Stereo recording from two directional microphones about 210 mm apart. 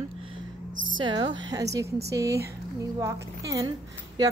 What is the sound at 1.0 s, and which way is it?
A woman's voice, 20° right (ahead or behind).